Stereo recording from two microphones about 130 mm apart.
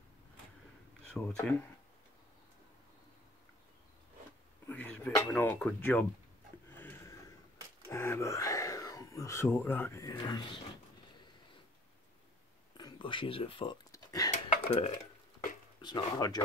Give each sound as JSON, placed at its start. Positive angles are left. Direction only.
{"t": 1.1, "sound": "speech", "side_deg": 5}
{"t": 4.6, "sound": "a sound", "side_deg": 15}
{"t": 5.3, "sound": "speech", "side_deg": 20}
{"t": 6.8, "sound": "a sound", "side_deg": 20}
{"t": 7.9, "sound": "speech", "side_deg": 20}
{"t": 10.1, "sound": "speech", "side_deg": 35}
{"t": 12.7, "sound": "speech", "side_deg": 35}
{"t": 13.9, "sound": "a sound", "side_deg": 30}
{"t": 14.5, "sound": "dishes", "side_deg": 60}
{"t": 15.8, "sound": "speech", "side_deg": 35}